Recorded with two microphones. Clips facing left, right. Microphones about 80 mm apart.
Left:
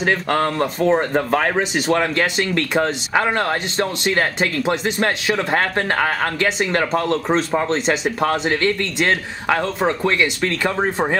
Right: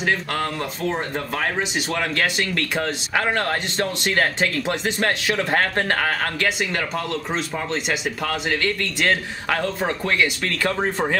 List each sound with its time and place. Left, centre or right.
0.0 s speech: left
2.0 s speech: left
6.6 s speech: left; by 11.1 s centre